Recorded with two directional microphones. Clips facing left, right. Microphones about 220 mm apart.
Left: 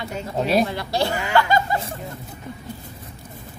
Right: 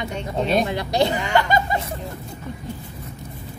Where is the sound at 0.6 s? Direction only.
20° right (ahead or behind).